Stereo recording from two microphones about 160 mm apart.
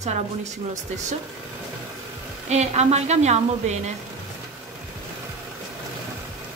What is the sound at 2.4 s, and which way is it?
A woman's voice, 45° right (ahead or behind).